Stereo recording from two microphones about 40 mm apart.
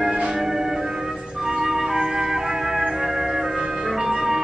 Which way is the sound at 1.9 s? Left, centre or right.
Right.